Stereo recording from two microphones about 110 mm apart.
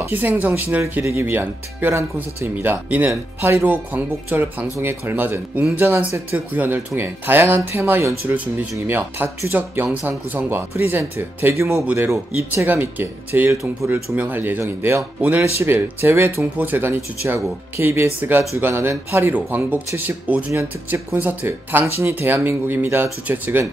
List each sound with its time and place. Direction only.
0.1 s speech: 15° right (ahead or behind)
11.7 s speech: 15° right (ahead or behind)